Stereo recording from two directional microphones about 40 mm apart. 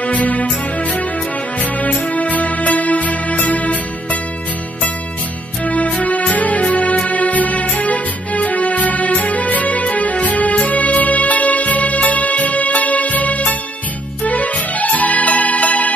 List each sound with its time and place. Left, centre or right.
0.0 s music: left
5.7 s music: left